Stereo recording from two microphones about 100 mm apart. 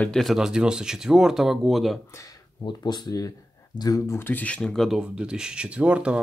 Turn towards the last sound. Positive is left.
turn(degrees=-10)  # may be behind; listen again after turning